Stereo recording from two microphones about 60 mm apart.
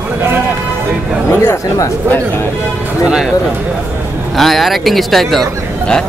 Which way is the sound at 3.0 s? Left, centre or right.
Centre.